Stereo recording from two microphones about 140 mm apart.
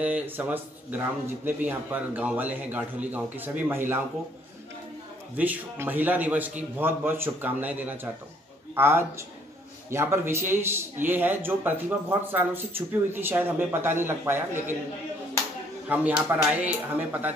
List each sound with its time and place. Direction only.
0.0 s a man's voice: 10° right (ahead or behind)
5.3 s a man's voice: 10° right (ahead or behind)
15.9 s a man's voice: 10° right (ahead or behind)